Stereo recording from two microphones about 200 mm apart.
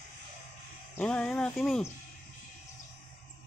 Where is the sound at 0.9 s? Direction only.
5° left (ahead or behind).